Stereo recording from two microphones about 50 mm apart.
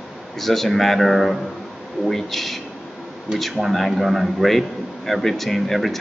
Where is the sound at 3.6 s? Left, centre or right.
Centre.